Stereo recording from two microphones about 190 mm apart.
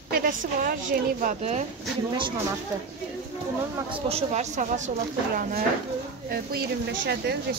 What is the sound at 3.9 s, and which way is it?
A woman's voice, 30° right (ahead or behind).